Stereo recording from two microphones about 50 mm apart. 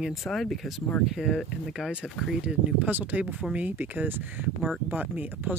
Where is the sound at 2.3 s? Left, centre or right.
Centre.